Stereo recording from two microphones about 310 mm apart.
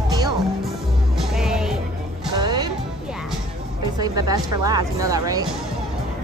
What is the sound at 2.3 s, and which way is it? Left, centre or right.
Music, centre.